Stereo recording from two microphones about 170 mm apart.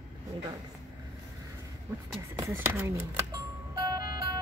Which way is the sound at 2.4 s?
10° right (ahead or behind).